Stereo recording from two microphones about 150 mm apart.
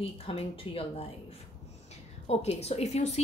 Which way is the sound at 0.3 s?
40° left (ahead or behind).